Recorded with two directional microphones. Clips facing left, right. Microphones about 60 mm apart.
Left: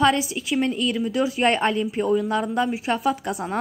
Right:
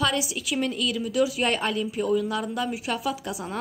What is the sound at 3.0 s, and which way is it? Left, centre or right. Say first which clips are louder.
Speech: left 6 dB; left.